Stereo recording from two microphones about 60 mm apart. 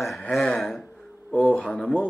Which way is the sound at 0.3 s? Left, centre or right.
Centre.